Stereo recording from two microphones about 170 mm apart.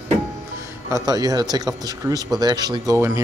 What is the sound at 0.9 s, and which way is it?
Speech, 20° right (ahead or behind).